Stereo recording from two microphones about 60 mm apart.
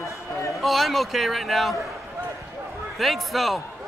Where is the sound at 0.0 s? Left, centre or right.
Left.